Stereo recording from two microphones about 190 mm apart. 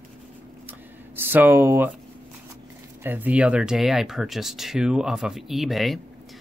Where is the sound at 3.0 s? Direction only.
10° right (ahead or behind).